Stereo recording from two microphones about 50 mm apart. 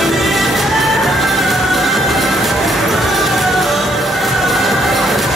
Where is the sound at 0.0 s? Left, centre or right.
Centre.